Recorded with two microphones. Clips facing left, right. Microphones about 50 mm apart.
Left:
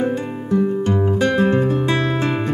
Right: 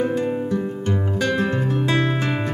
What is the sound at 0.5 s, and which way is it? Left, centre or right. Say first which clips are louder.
Music: left 5 dB; left.